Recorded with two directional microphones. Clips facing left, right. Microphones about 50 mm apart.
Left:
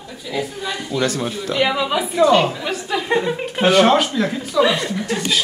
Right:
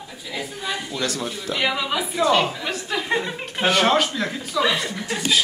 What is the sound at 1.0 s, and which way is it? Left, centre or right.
Speech, left.